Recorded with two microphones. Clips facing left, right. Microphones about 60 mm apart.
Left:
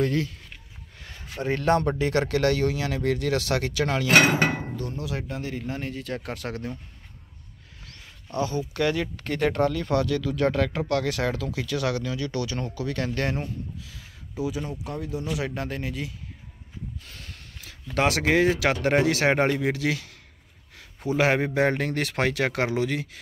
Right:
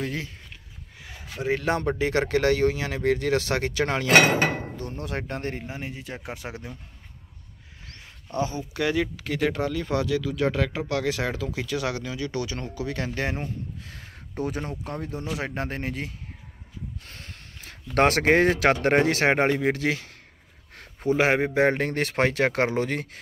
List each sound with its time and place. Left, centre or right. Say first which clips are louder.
0.9 s speech: left 1 dB; centre; by 5.6 s right
5.6 s speech: left 3 dB; centre
7.8 s speech: right 1 dB; right; by 9.8 s centre
9.8 s speech: left 1 dB; centre
13.7 s speech: right 1 dB; right
17.0 s a sound: even; right
17.9 s speech: right 3 dB; right
20.7 s a sound: right 3 dB; right
21.3 s speech: right 1 dB; right